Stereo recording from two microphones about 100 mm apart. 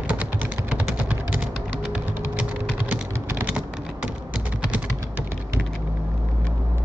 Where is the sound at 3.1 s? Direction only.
25° right (ahead or behind).